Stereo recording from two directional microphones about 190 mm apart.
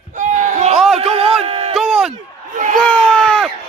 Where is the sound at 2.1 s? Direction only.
40° right (ahead or behind).